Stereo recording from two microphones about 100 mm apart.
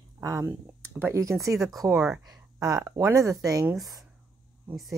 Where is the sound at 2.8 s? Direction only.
30° right (ahead or behind).